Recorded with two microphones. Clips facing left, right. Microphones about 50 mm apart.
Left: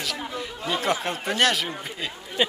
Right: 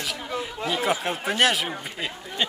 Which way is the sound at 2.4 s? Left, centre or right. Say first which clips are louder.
Left 3 dB; centre.